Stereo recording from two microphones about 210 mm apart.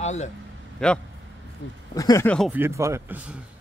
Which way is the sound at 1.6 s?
55° left (ahead or behind).